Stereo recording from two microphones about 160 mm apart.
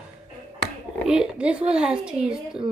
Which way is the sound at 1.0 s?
5° right (ahead or behind).